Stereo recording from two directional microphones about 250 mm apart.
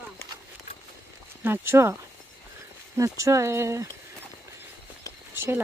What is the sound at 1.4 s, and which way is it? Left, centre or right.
Speech, centre.